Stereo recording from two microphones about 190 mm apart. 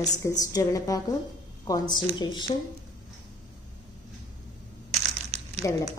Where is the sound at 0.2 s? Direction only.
20° left (ahead or behind).